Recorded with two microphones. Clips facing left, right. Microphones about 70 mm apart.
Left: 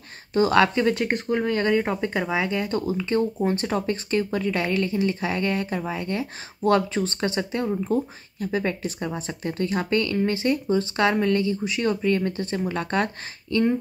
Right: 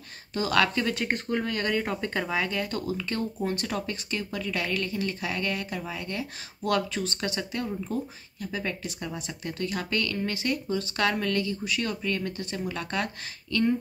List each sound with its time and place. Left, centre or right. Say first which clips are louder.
0.3 s speech: left 6 dB; left
1.0 s speech: left 5 dB; centre